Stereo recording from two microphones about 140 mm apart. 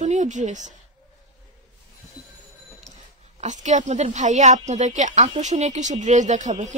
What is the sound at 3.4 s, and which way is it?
Speech, 60° right (ahead or behind).